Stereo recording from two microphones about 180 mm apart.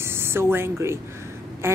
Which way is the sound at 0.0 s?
15° right (ahead or behind).